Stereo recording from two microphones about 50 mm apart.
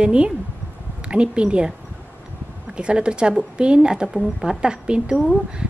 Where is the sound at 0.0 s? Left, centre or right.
Centre.